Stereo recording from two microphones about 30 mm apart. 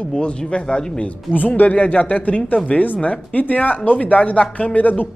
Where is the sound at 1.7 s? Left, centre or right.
Left.